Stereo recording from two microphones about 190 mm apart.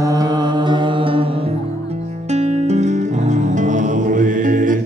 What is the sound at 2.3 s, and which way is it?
Music, 35° right (ahead or behind).